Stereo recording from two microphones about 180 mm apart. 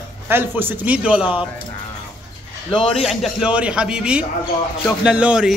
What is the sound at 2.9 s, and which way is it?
A man's voice, centre (ahead or behind).